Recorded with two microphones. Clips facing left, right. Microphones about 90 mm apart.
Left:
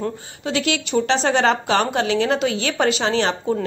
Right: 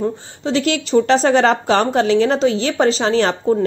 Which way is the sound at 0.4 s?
35° right (ahead or behind).